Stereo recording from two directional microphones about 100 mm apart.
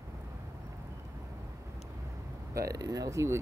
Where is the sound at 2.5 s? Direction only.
35° right (ahead or behind).